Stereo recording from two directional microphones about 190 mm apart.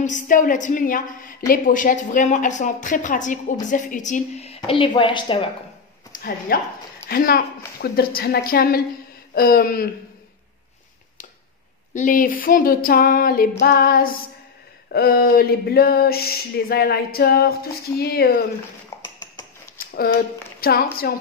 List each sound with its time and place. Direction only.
0.0 s a woman's voice: 40° left (ahead or behind); by 5.5 s 25° left (ahead or behind)
6.1 s speech: 45° left (ahead or behind)
11.9 s speech: 45° left (ahead or behind)
19.0 s a sound: 20° left (ahead or behind)
20.6 s speech: 50° left (ahead or behind)